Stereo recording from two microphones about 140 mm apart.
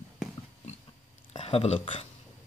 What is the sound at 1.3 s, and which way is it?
Speech, 45° left (ahead or behind).